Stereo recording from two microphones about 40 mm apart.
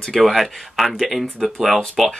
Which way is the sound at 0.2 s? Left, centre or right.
Centre.